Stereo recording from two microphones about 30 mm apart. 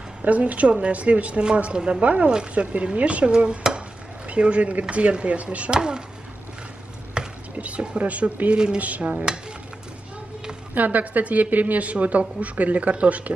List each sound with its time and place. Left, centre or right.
0.2 s speech: right
1.8 s stir: right
4.3 s speech: right
5.7 s speech: right
7.2 s chopping: right
7.5 s a sound: right
8.0 s a woman's voice: right
10.7 s a woman's voice: right